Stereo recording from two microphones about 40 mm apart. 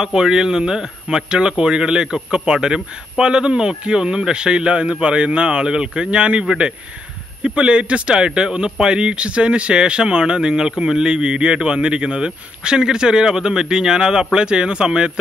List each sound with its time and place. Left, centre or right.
0.0 s speech: centre